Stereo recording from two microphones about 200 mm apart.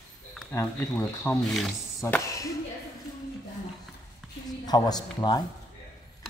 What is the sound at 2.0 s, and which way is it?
Speech, 10° left (ahead or behind).